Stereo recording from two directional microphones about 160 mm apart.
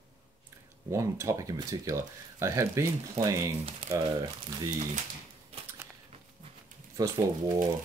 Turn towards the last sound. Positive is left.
turn(degrees=-20)  # may be behind; listen again after turning